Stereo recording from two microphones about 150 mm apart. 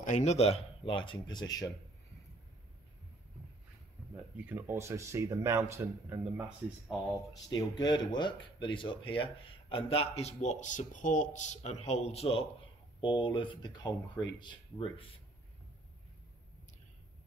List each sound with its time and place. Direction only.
0.0 s speech: 50° left (ahead or behind); by 1.7 s 25° left (ahead or behind)
4.4 s speech: 15° right (ahead or behind)
7.4 s speech: 30° left (ahead or behind)